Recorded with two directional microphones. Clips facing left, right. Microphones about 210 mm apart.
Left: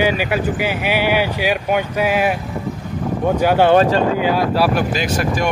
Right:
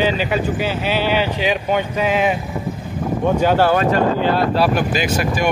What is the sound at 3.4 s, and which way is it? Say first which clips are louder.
Speech: left 1 dB; 10° left (ahead or behind).